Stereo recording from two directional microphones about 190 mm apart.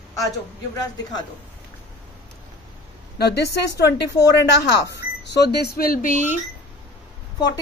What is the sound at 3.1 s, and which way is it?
Speech, 60° left (ahead or behind).